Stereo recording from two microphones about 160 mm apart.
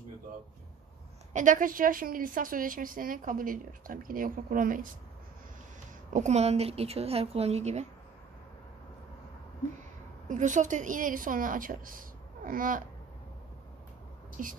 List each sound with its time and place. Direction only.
1.3 s a woman's voice: 55° right (ahead or behind)
6.1 s a woman's voice: 45° right (ahead or behind)
10.2 s a woman's voice: 50° right (ahead or behind)
14.4 s a woman's voice: 55° right (ahead or behind)